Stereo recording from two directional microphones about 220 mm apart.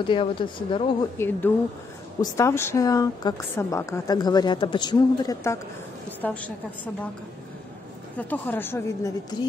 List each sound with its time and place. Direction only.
0.0 s speech: 20° left (ahead or behind)
1.1 s a woman's voice: 10° left (ahead or behind)
8.2 s a woman's voice: 10° left (ahead or behind)